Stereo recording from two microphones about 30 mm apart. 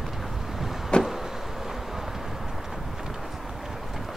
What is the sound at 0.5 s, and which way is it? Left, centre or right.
Vehicle, centre.